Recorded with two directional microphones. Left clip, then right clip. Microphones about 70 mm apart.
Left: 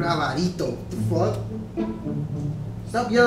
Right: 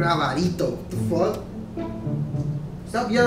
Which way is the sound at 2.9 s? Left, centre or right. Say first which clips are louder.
Left 2 dB; right.